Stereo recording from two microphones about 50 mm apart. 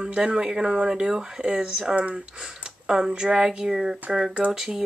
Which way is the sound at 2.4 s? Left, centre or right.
Centre.